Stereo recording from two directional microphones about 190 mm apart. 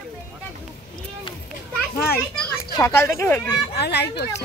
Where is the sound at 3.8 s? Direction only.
60° left (ahead or behind).